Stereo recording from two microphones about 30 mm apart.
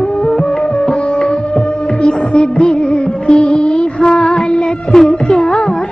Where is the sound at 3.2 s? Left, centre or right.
Left.